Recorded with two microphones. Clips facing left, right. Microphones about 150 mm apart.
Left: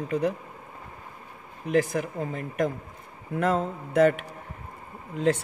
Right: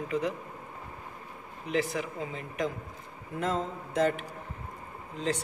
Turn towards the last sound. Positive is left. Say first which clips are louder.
# left 7 dB
turn(degrees=55)  # may be behind; listen again after turning